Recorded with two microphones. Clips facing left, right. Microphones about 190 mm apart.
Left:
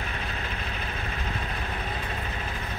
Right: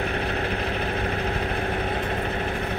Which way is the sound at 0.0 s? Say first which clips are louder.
Right 9 dB; 55° right (ahead or behind).